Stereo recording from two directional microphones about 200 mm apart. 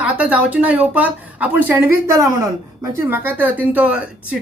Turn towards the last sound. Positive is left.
turn(degrees=-5)  # may be behind; listen again after turning